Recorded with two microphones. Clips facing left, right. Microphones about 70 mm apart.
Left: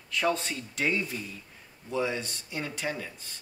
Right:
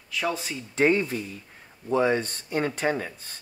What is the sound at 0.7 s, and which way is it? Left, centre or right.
Speech, right.